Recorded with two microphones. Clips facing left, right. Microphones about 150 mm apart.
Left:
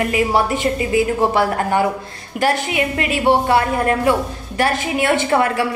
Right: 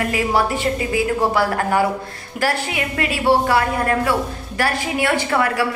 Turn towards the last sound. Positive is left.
turn(degrees=25)  # may be behind; listen again after turning